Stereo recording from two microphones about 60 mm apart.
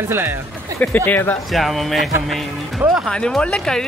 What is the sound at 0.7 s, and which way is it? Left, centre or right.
Speech, left.